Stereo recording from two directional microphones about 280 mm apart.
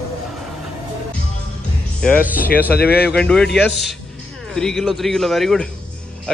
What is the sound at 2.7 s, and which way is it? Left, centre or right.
Speech, left.